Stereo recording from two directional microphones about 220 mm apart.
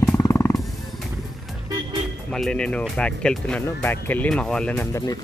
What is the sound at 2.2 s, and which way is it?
Speech, 5° left (ahead or behind).